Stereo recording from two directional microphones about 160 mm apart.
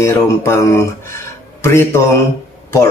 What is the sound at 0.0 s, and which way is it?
Speech, 15° left (ahead or behind).